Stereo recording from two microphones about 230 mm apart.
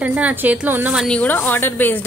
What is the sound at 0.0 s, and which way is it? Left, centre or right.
A woman's voice, centre.